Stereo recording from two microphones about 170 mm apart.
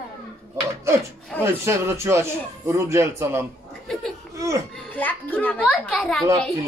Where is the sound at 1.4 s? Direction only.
15° right (ahead or behind).